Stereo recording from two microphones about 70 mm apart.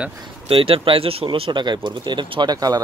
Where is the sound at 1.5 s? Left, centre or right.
Right.